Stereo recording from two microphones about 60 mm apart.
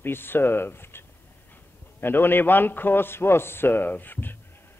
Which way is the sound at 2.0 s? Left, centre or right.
Left.